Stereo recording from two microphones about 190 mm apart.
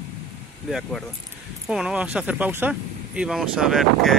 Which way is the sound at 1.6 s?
5° right (ahead or behind).